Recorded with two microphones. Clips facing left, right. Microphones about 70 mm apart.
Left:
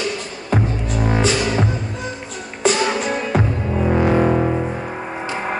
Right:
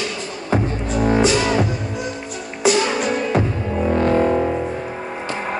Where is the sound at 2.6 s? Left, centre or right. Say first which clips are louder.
Right 1 dB; centre.